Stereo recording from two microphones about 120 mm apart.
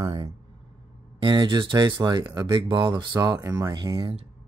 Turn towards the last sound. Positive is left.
turn(degrees=-45)  # may be behind; listen again after turning